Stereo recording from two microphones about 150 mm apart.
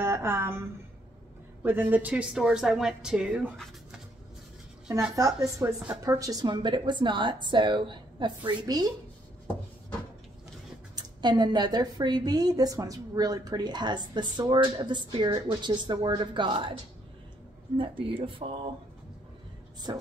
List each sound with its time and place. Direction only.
0.0 s a woman's voice: 15° right (ahead or behind)
5.1 s a woman's voice: 20° right (ahead or behind)
11.0 s speech: 30° right (ahead or behind)
17.7 s a woman's voice: 35° right (ahead or behind)
19.9 s speech: 25° right (ahead or behind)